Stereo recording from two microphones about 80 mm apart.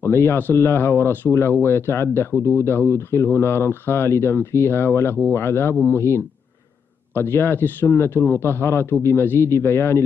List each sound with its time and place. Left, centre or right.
0.0 s speech: left